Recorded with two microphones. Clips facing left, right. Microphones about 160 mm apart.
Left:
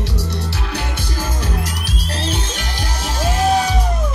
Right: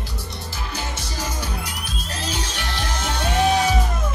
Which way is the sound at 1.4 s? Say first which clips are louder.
Left 5 dB; 90° left.